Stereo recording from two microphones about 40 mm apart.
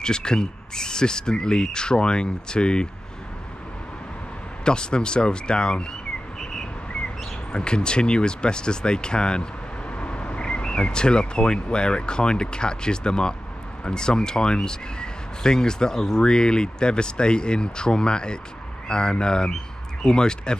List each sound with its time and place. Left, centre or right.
0.0 s speech: centre
4.6 s speech: left
6.5 s whistling: left
7.5 s speech: left